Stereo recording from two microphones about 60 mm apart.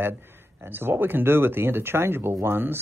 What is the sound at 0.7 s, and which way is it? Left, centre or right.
Speech, right.